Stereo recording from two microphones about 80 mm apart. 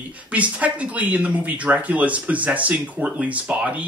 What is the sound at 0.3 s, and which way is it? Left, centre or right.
Speech, centre.